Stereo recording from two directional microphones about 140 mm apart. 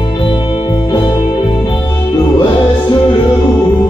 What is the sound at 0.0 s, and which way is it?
Music, 35° left (ahead or behind).